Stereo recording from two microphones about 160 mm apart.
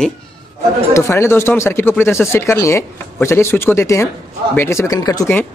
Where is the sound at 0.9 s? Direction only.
15° left (ahead or behind).